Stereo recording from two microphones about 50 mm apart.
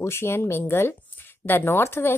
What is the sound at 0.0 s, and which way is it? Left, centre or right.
Speech, left.